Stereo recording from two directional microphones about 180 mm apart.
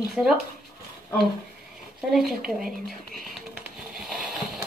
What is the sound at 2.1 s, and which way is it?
Speech, centre (ahead or behind).